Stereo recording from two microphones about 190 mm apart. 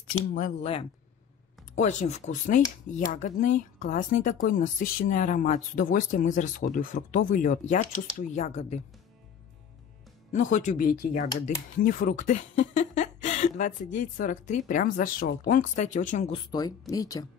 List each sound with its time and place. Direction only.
0.6 s speech: 30° left (ahead or behind)
10.3 s speech: 40° left (ahead or behind)
16.3 s speech: 20° left (ahead or behind)